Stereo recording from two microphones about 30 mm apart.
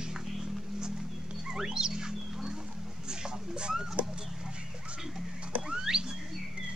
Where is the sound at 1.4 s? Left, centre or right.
Right.